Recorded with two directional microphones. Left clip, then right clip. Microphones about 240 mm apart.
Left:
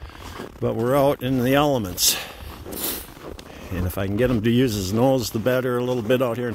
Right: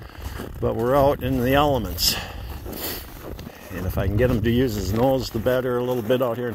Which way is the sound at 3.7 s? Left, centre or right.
Left.